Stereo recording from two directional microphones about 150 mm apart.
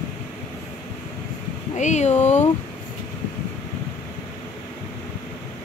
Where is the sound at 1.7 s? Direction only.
50° left (ahead or behind).